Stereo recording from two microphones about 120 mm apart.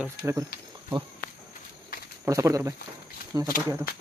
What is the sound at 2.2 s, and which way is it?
Speech, 25° right (ahead or behind).